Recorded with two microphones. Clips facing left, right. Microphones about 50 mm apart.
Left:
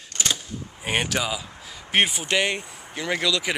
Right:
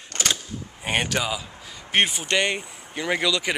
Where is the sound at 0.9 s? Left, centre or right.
Centre.